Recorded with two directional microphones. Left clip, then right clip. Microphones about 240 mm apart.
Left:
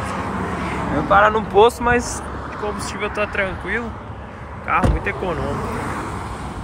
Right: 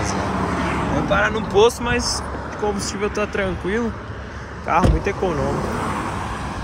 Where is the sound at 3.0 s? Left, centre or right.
Centre.